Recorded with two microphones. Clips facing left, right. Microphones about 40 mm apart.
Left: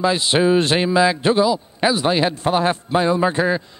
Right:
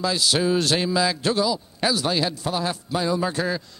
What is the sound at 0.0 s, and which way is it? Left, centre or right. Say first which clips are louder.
A man's voice: left 5 dB; left.